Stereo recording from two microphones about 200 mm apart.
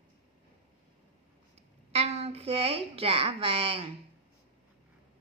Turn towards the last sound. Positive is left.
turn(degrees=-25)  # may be behind; listen again after turning